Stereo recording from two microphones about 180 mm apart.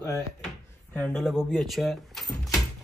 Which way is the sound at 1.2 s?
Centre (ahead or behind).